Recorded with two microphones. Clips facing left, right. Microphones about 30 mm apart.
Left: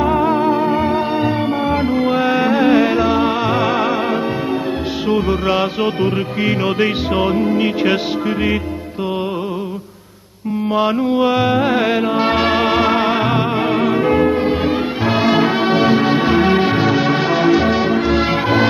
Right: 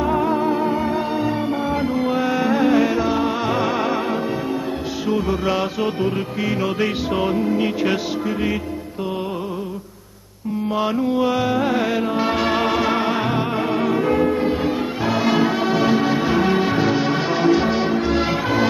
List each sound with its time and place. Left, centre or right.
0.0 s music: left
3.6 s music: centre
5.1 s music: left
10.7 s music: left
16.8 s music: centre
18.2 s music: left